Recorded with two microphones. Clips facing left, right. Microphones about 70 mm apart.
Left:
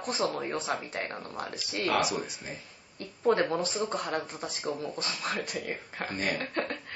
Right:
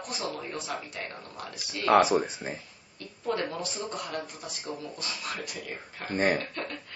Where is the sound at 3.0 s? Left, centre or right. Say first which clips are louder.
Left 5 dB; left.